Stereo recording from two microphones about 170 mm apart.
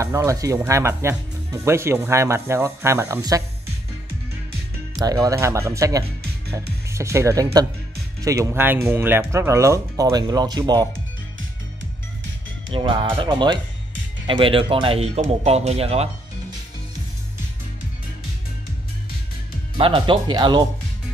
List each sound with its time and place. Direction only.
0.0 s speech: 15° right (ahead or behind)
4.9 s speech: 20° right (ahead or behind)
12.7 s speech: 30° right (ahead or behind)
19.8 s speech: 30° right (ahead or behind)